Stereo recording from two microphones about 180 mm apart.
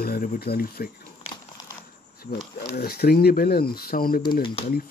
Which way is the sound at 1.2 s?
35° left (ahead or behind).